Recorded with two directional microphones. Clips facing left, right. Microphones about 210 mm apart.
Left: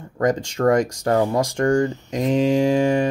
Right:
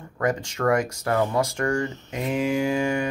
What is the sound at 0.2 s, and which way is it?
Speech, 35° left (ahead or behind).